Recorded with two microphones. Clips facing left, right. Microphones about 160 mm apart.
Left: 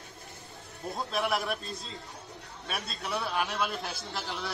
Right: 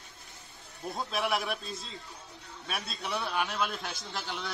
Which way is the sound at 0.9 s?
Centre (ahead or behind).